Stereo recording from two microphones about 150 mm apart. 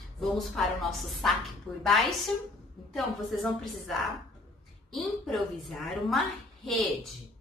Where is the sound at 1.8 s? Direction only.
Centre (ahead or behind).